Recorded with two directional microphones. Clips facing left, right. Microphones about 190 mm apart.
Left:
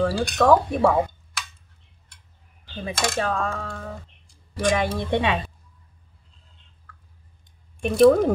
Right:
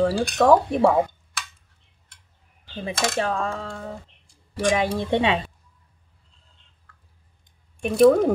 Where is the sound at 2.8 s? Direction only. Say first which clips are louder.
Right 1 dB; 25° right (ahead or behind).